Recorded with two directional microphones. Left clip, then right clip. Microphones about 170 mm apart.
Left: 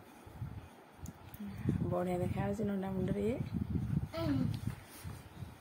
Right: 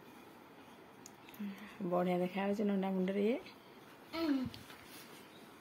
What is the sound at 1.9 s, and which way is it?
A woman's voice, 10° right (ahead or behind).